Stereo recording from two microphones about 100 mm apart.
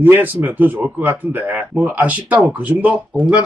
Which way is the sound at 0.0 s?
20° right (ahead or behind).